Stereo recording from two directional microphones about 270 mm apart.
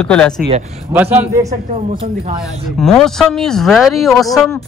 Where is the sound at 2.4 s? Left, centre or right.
Centre.